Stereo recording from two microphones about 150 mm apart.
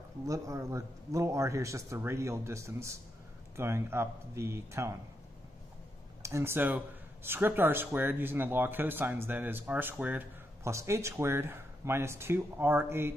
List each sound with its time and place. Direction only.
0.3 s speech: 20° right (ahead or behind)
6.2 s speech: 20° right (ahead or behind)